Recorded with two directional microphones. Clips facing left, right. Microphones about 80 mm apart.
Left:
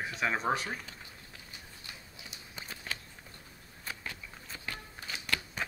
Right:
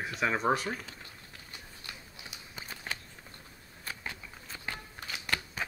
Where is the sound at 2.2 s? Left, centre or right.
Centre.